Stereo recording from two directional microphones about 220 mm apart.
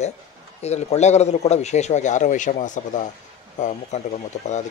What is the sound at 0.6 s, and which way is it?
Speech, 30° left (ahead or behind).